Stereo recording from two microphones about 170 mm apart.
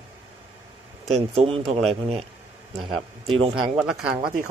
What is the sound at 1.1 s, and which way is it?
Speech, 35° right (ahead or behind).